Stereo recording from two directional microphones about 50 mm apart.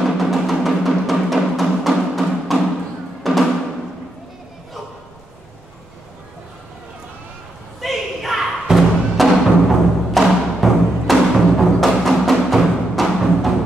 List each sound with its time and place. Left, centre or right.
0.0 s music: centre
7.8 s a sound: centre
8.6 s music: centre